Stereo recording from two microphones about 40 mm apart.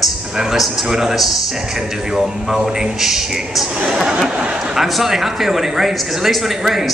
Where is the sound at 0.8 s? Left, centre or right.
Centre.